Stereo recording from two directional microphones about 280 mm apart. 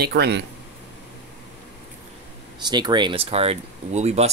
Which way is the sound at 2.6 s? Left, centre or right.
Centre.